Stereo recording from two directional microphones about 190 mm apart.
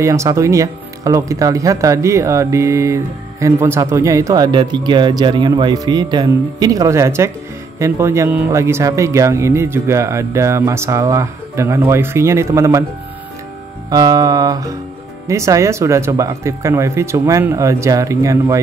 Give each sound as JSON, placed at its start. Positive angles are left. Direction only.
{"t": 0.0, "sound": "speech", "side_deg": -15}
{"t": 13.8, "sound": "speech", "side_deg": -20}